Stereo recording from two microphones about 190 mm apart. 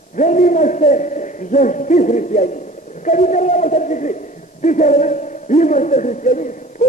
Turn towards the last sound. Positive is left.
turn(degrees=40)  # may be behind; listen again after turning